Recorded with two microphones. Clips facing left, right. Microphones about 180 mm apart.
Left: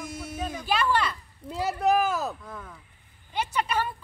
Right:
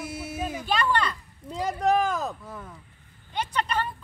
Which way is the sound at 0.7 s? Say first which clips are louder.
Left 1 dB; 5° left (ahead or behind).